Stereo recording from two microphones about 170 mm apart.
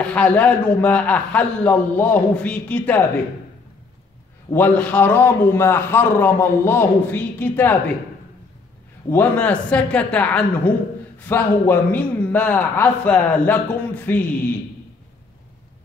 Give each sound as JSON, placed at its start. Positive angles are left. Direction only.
{"t": 0.0, "sound": "a man's voice", "side_deg": 10}
{"t": 4.5, "sound": "a man's voice", "side_deg": 10}
{"t": 9.1, "sound": "a man's voice", "side_deg": 10}